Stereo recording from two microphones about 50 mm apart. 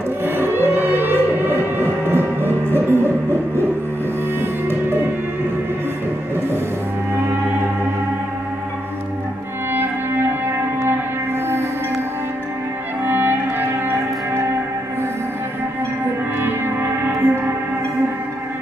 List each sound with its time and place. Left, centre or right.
0.2 s music: right
9.8 s music: right
13.0 s music: right
16.3 s music: right